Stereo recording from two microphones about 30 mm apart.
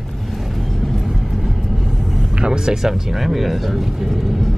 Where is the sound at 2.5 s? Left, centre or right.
Right; by 4.5 s centre.